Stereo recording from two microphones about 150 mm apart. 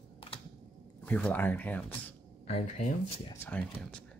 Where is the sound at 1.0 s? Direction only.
10° left (ahead or behind).